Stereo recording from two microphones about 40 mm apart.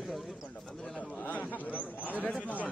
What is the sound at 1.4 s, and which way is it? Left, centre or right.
Speech, left.